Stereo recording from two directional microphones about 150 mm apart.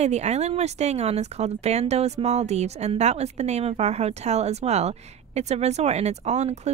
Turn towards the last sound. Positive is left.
turn(degrees=-45)  # may be behind; listen again after turning